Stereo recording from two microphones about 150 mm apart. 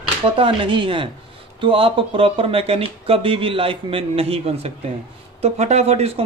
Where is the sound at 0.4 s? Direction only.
35° right (ahead or behind).